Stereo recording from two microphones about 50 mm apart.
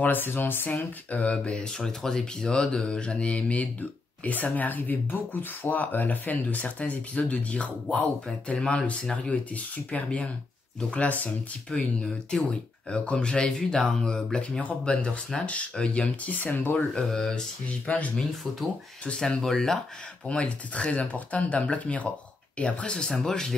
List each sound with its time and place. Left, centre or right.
0.0 s speech: left
1.1 s speech: left
11.7 s speech: left
12.9 s speech: left
14.6 s speech: left
16.7 s speech: centre
19.1 s speech: centre
20.2 s speech: left